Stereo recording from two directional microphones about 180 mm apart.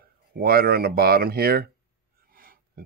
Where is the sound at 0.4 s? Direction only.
55° right (ahead or behind).